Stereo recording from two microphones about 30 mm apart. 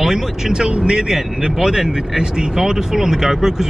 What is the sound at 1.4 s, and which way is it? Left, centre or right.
Speech, right.